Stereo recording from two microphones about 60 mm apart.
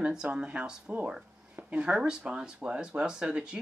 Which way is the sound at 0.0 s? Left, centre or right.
Centre.